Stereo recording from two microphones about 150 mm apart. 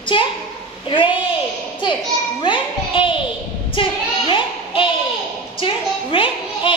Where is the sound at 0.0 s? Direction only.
35° left (ahead or behind).